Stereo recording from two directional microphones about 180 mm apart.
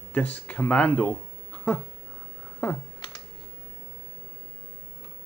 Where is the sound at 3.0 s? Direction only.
25° left (ahead or behind).